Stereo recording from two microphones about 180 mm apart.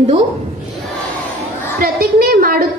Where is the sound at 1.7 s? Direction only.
55° right (ahead or behind).